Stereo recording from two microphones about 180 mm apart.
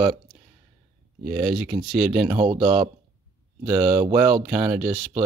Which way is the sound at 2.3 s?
30° right (ahead or behind).